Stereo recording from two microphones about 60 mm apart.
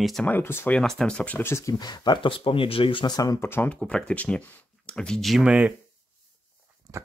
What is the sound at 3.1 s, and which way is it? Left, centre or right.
Speech, left.